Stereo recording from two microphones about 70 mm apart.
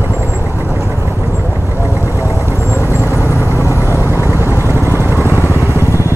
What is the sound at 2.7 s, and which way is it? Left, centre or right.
Vehicle, left.